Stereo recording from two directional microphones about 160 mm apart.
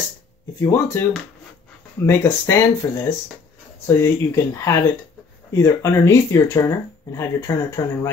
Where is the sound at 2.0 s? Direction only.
15° left (ahead or behind).